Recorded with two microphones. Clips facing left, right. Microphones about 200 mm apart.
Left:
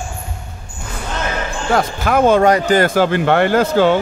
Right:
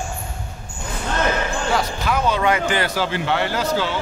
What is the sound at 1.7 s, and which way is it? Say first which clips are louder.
Speech: left 9 dB; 50° left (ahead or behind).